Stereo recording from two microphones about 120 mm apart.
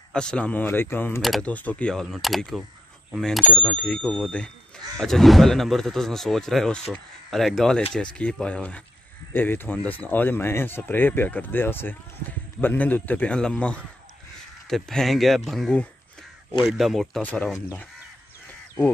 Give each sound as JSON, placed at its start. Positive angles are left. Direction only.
{"t": 0.1, "sound": "speech", "side_deg": 5}
{"t": 17.2, "sound": "speech", "side_deg": 15}